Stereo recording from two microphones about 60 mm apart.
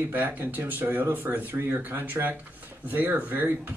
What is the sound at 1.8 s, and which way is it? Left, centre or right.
Speech, right.